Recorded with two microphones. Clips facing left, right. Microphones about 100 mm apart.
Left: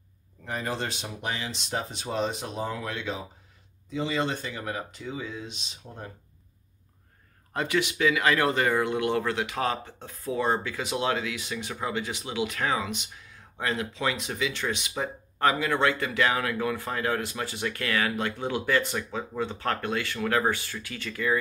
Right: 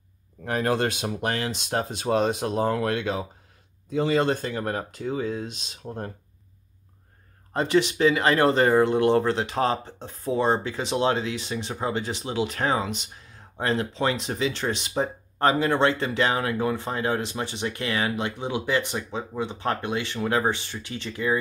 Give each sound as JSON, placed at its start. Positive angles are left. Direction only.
{"t": 0.5, "sound": "speech", "side_deg": -60}
{"t": 3.9, "sound": "speech", "side_deg": -45}
{"t": 7.5, "sound": "speech", "side_deg": -30}